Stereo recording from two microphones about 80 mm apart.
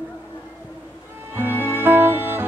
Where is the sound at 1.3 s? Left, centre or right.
Right.